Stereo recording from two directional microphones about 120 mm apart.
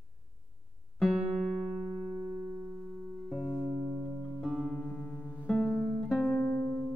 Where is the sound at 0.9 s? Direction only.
Centre (ahead or behind).